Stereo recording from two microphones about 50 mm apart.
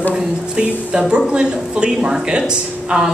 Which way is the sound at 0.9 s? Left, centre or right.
Centre.